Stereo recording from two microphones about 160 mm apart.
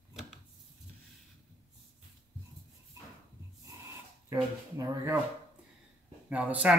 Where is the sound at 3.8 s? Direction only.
20° right (ahead or behind).